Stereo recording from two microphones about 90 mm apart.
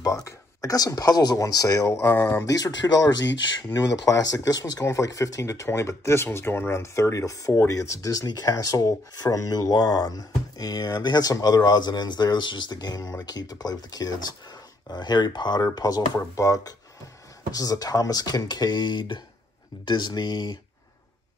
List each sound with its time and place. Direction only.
0.0 s speech: 40° left (ahead or behind)
1.9 s speech: 30° left (ahead or behind); by 20.5 s 50° left (ahead or behind)